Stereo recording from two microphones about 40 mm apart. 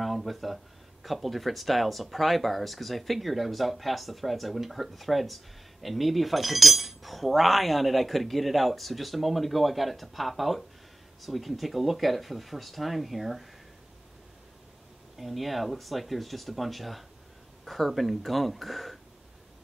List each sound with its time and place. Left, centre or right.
0.0 s a sound: centre
1.0 s speech: centre
15.1 s speech: centre